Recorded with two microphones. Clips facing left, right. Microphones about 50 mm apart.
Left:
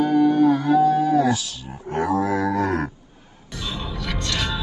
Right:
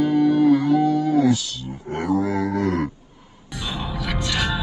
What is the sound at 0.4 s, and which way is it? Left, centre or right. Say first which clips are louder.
Music: even; left.